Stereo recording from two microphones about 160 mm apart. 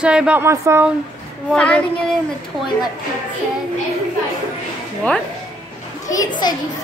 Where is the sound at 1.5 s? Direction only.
5° left (ahead or behind).